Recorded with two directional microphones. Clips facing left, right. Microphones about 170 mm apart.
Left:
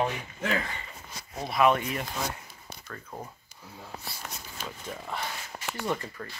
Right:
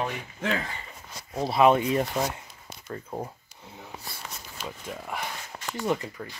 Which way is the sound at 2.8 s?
25° right (ahead or behind).